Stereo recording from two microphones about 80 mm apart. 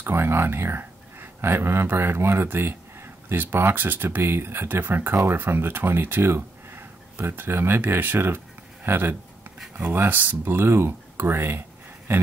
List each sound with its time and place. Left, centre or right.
0.0 s speech: right